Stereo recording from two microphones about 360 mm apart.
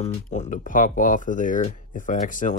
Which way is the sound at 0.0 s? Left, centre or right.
Centre.